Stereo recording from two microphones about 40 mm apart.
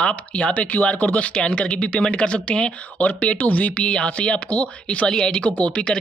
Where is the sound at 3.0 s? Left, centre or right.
Left.